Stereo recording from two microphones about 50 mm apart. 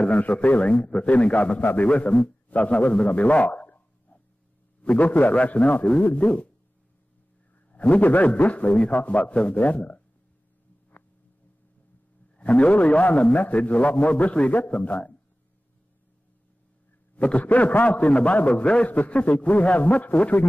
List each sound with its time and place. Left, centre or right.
0.1 s a man's voice: left
7.7 s a man's voice: left
12.4 s a man's voice: left
17.1 s a man's voice: left